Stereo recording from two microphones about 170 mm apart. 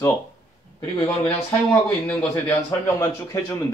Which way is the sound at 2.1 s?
15° left (ahead or behind).